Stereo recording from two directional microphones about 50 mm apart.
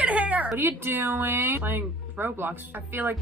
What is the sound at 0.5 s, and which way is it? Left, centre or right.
A woman's voice, right.